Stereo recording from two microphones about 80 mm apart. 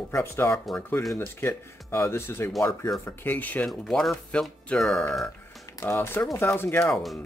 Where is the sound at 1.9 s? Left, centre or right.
Left.